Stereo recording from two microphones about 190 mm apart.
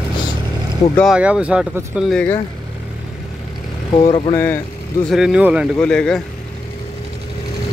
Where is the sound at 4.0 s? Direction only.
30° left (ahead or behind).